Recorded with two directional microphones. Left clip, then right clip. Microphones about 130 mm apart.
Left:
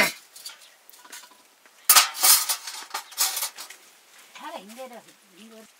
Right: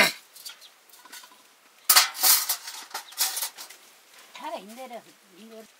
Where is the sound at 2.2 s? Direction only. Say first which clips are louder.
Left 2 dB; 5° right (ahead or behind).